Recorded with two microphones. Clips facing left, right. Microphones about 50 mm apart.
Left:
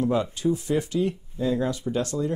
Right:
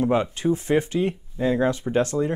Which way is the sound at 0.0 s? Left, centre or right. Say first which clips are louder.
Right 2 dB; right.